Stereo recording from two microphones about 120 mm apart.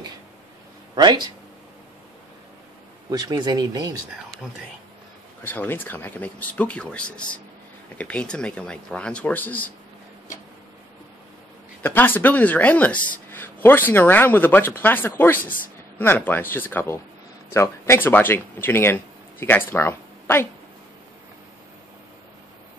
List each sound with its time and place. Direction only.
0.9 s speech: 35° right (ahead or behind)
3.1 s speech: 30° right (ahead or behind)
5.4 s speech: 15° left (ahead or behind)
11.8 s speech: 15° left (ahead or behind)